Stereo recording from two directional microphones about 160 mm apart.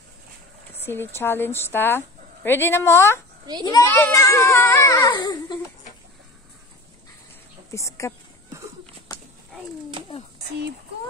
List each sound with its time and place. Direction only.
0.8 s speech: 15° left (ahead or behind)
5.1 s babbling: 25° left (ahead or behind)
7.7 s speech: 20° left (ahead or behind)